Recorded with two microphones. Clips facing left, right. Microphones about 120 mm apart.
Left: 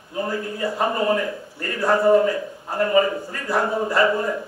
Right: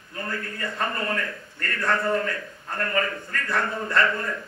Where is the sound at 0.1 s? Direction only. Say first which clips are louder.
Left 7 dB; 15° left (ahead or behind).